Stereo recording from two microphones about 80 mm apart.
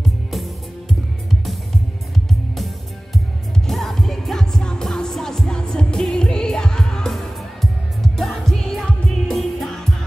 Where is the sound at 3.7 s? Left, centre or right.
Centre.